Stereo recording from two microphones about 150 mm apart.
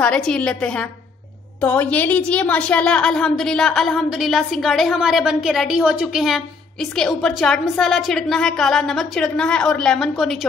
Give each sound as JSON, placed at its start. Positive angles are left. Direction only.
{"t": 0.0, "sound": "a woman's voice", "side_deg": 5}